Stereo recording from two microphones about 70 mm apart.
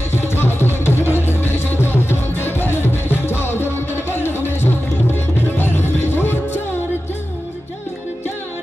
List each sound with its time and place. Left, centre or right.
0.1 s music: left